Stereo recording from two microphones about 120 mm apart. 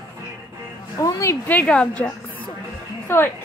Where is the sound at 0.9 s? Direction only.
30° left (ahead or behind).